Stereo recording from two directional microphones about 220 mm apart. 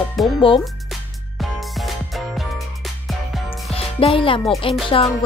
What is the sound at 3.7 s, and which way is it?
Music, 25° left (ahead or behind).